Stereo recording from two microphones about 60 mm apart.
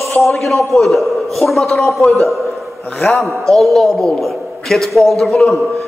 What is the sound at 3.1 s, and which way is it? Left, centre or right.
A man's voice, centre.